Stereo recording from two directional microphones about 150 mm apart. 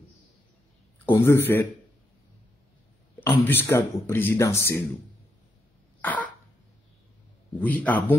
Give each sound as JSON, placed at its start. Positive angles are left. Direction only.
{"t": 1.0, "sound": "a man's voice", "side_deg": 15}
{"t": 3.3, "sound": "speech", "side_deg": 15}
{"t": 5.9, "sound": "cough", "side_deg": 10}
{"t": 7.6, "sound": "speech", "side_deg": 10}